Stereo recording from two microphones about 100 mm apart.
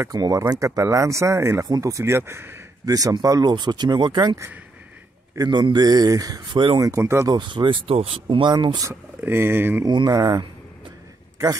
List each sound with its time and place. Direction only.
0.0 s speech: 40° right (ahead or behind)
2.8 s speech: 35° right (ahead or behind)
5.4 s speech: 50° right (ahead or behind); by 7.2 s 25° right (ahead or behind)
7.2 s speech: 50° right (ahead or behind)
9.2 s speech: 25° right (ahead or behind)
9.8 s speech: 45° right (ahead or behind)